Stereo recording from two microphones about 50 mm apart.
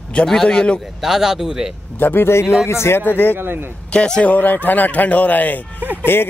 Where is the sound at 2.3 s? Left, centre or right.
Left.